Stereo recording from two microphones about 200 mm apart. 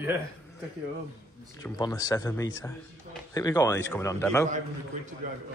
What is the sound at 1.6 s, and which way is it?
Speech, 15° left (ahead or behind).